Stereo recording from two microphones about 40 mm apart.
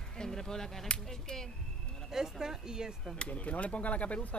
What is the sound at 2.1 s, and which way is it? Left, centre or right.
Speech, centre.